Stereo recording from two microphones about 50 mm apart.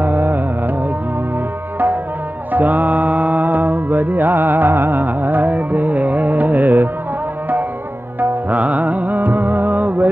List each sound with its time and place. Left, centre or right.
0.0 s music: right
2.5 s mantra: right
8.2 s music: right